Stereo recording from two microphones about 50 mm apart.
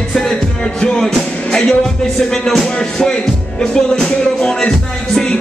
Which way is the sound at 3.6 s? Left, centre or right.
Centre.